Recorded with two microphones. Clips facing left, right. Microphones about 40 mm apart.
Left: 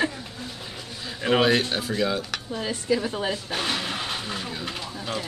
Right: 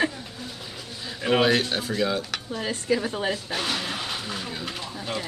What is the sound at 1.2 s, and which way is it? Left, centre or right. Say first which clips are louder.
Cutlery: even; centre.